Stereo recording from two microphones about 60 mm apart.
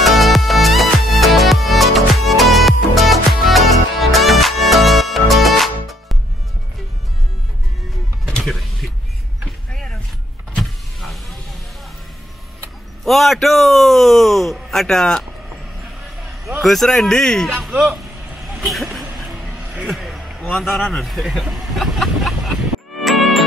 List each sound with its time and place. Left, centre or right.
0.0 s music: centre
8.4 s mechanisms: centre
9.7 s vehicle: centre
10.5 s power windows: centre
13.0 s a sound: centre
16.6 s a man's voice: centre
17.6 s speech: centre
19.1 s a sound: centre
19.6 s music: centre
19.9 s a sound: centre
20.9 s speech: centre
23.0 s music: centre